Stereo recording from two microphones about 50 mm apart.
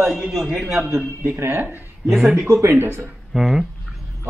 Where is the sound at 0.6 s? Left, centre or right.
Centre.